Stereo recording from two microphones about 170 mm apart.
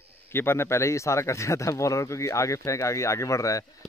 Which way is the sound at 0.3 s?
15° left (ahead or behind).